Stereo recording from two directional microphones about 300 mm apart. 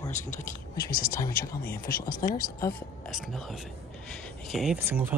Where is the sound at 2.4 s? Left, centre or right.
Centre.